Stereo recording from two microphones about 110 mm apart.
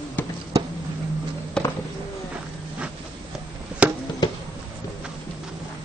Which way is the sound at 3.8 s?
10° right (ahead or behind).